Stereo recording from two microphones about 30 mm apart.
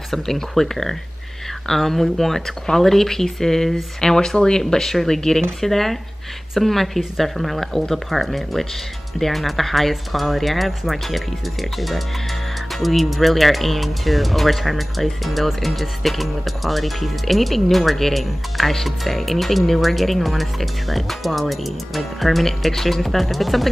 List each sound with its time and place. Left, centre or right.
0.1 s speech: centre
4.0 s speech: left
5.6 s speech: centre
12.7 s speech: centre